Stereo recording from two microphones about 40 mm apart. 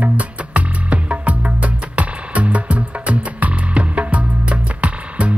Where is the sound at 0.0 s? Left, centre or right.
Right.